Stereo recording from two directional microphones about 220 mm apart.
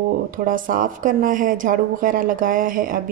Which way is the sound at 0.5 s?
40° right (ahead or behind).